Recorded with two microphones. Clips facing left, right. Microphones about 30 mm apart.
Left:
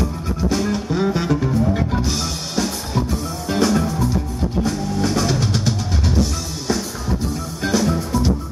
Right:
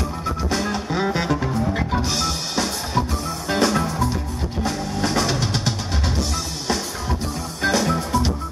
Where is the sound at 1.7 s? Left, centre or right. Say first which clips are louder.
Left 2 dB; centre.